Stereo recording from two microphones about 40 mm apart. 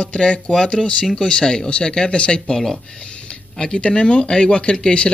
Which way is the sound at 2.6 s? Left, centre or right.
Centre.